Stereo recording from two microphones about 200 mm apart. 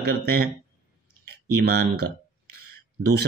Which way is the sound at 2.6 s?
55° right (ahead or behind).